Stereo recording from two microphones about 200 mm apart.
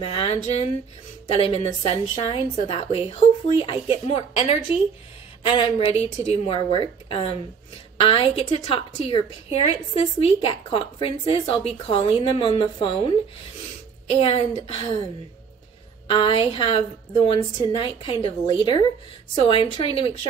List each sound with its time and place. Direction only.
0.0 s a woman's voice: 30° left (ahead or behind)
14.2 s a woman's voice: 30° left (ahead or behind)
16.1 s a woman's voice: 25° left (ahead or behind)